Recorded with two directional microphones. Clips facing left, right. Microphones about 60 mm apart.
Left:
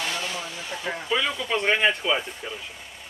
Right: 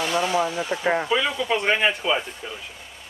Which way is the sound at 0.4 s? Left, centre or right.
Right.